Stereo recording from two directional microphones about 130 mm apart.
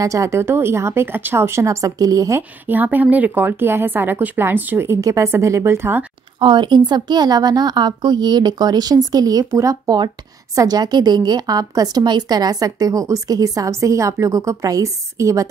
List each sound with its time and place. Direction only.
0.0 s a woman's voice: 25° right (ahead or behind)
2.6 s speech: 15° right (ahead or behind)
6.4 s a woman's voice: 35° right (ahead or behind)